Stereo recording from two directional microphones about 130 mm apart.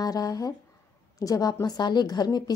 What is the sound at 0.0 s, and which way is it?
A woman's voice, 30° left (ahead or behind).